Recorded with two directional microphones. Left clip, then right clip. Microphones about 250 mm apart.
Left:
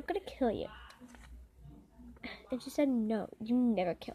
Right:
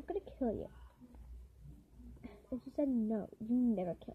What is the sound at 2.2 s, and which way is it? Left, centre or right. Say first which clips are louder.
A woman's voice: left 6 dB; centre.